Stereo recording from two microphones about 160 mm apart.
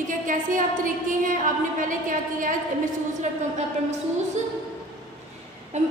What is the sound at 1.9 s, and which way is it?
Speech, 55° right (ahead or behind).